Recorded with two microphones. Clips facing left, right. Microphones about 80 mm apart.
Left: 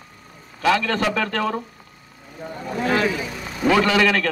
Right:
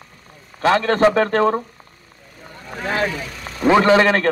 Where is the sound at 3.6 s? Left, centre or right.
Right.